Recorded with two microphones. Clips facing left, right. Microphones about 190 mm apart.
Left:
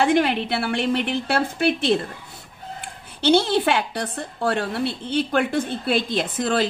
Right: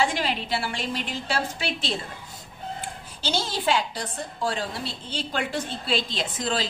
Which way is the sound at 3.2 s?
60° left (ahead or behind).